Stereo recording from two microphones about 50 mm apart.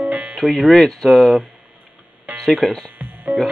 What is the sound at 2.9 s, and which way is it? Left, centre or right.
Music, right.